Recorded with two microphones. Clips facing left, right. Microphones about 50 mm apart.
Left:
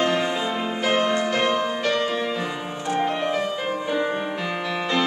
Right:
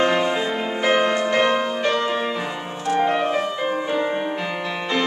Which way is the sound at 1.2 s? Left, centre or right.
Centre.